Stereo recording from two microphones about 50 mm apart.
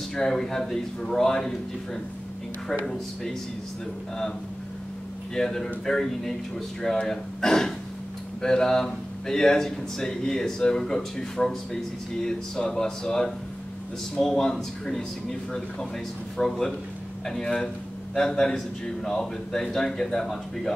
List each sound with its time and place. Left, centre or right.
0.1 s speech: centre
5.3 s speech: centre